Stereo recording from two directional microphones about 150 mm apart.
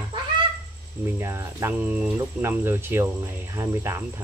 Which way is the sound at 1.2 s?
20° right (ahead or behind).